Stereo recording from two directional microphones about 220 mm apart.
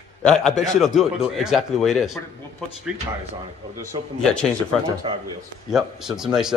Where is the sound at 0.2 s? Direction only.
Centre (ahead or behind).